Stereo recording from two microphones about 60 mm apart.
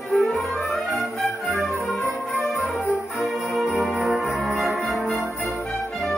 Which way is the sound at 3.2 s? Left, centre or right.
Centre.